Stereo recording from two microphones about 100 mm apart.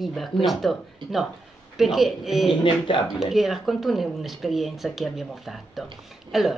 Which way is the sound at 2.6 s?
55° left (ahead or behind).